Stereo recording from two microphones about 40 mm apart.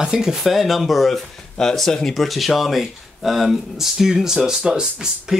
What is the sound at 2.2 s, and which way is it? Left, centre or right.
Speech, centre.